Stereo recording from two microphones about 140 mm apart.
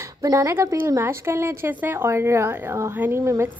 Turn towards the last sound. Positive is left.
turn(degrees=-20)  # may be behind; listen again after turning